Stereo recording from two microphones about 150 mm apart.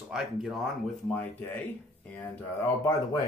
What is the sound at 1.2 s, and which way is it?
Speech, 10° left (ahead or behind).